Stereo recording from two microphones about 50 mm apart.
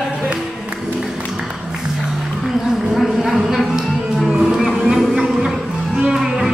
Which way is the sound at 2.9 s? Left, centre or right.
Centre.